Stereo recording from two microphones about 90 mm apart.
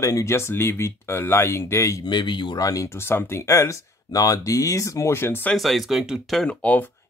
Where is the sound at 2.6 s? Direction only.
40° left (ahead or behind).